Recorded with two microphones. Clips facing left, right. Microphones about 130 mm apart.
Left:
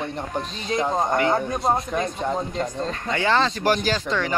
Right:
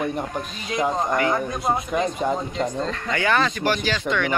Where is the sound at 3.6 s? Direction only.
40° left (ahead or behind).